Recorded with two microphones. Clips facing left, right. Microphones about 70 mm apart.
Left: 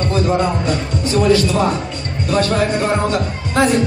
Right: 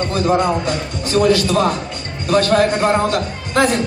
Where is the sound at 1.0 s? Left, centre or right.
Right.